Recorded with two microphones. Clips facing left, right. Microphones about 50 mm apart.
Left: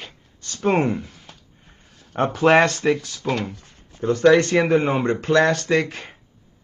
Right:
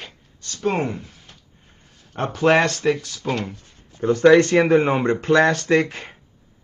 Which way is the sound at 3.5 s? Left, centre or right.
Left.